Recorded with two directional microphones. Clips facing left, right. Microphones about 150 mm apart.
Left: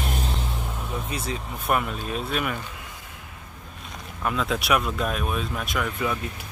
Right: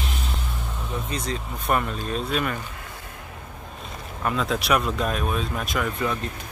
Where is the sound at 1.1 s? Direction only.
5° left (ahead or behind).